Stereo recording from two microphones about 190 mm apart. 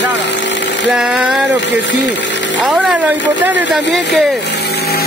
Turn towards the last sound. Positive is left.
turn(degrees=-10)  # may be behind; listen again after turning